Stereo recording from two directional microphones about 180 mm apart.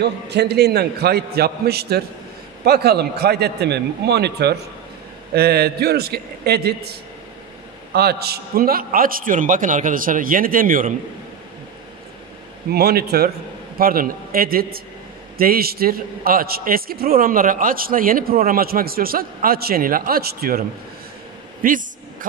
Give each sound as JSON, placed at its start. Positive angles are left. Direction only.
{"t": 0.0, "sound": "a man's voice", "side_deg": -65}
{"t": 7.9, "sound": "a man's voice", "side_deg": -60}
{"t": 12.7, "sound": "a man's voice", "side_deg": -60}
{"t": 21.6, "sound": "a man's voice", "side_deg": -50}